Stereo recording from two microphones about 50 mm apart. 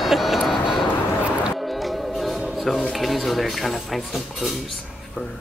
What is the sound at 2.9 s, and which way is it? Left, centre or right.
Speech, centre.